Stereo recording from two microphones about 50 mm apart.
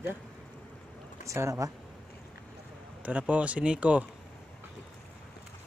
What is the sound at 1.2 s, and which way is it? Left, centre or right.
Speech, right.